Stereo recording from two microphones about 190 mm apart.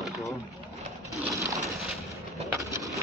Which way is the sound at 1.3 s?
15° right (ahead or behind).